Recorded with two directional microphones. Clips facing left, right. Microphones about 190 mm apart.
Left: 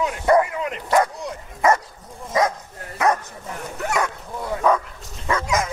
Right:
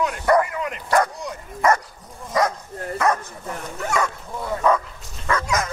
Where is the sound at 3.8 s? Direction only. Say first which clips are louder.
Even; 5° left (ahead or behind).